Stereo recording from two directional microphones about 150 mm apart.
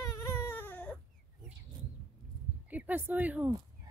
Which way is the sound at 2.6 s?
10° right (ahead or behind).